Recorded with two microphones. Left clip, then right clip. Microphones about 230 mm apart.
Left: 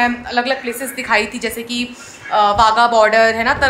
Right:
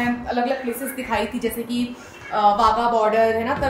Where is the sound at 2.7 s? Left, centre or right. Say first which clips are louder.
Left 7 dB; left.